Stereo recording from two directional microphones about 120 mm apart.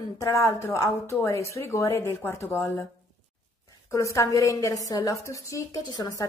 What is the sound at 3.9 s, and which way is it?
A woman's voice, 25° left (ahead or behind).